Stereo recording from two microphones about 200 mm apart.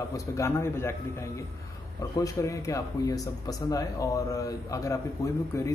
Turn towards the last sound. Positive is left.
turn(degrees=15)  # may be behind; listen again after turning